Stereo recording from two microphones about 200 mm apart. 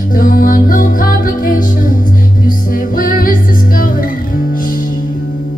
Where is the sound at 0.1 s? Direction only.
45° left (ahead or behind).